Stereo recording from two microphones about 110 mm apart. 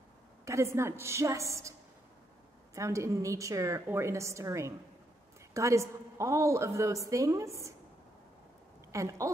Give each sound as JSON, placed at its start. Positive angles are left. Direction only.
{"t": 0.5, "sound": "a woman's voice", "side_deg": -25}
{"t": 8.9, "sound": "speech", "side_deg": -30}